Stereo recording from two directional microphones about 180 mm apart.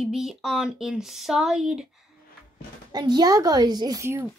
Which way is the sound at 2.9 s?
25° right (ahead or behind).